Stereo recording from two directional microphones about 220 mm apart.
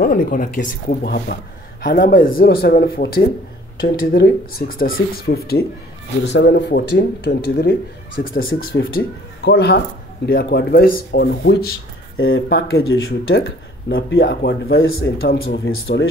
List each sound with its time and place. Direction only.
0.0 s speech: 40° left (ahead or behind)
12.2 s speech: 60° left (ahead or behind)
13.3 s speech: 45° left (ahead or behind)
14.7 s speech: 65° left (ahead or behind)
15.4 s speech: 45° left (ahead or behind)